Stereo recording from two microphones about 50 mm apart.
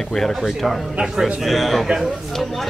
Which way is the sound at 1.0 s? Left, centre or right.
Centre.